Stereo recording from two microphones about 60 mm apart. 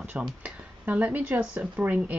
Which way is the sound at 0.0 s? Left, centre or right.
Right.